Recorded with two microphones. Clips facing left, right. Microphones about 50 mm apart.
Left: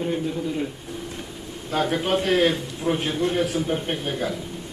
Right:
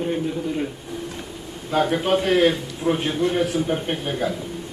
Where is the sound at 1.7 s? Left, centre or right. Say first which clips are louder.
Right 3 dB; centre.